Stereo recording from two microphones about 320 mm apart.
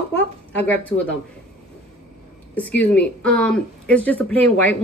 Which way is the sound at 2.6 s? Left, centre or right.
Centre.